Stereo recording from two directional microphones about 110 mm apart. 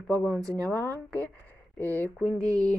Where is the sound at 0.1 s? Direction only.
10° left (ahead or behind).